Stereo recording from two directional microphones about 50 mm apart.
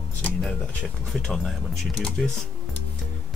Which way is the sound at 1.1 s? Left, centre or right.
Centre.